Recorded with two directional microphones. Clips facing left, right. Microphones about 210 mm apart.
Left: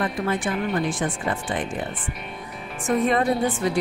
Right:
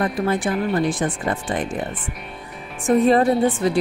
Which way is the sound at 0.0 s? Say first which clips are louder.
Right 4 dB; 40° right (ahead or behind).